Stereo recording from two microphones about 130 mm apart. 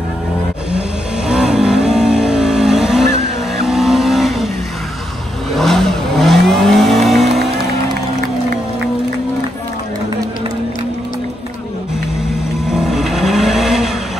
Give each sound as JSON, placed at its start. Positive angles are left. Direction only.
{"t": 1.3, "sound": "vehicle", "side_deg": -5}
{"t": 5.5, "sound": "vehicle", "side_deg": 0}
{"t": 12.6, "sound": "vehicle", "side_deg": -5}